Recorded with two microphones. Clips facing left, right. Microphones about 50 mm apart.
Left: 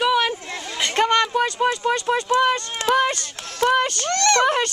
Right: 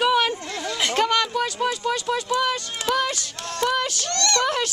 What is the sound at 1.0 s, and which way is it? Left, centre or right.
Speech, left.